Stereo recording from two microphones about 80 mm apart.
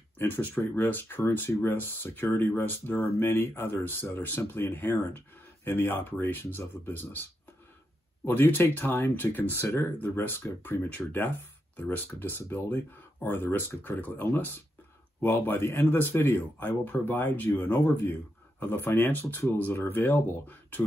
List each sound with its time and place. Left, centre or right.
0.2 s speech: left
8.3 s speech: left